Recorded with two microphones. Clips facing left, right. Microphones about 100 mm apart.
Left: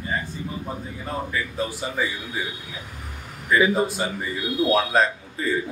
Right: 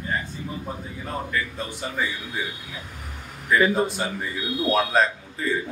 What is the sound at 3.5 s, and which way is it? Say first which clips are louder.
A man's voice: left 1 dB; 5° left (ahead or behind).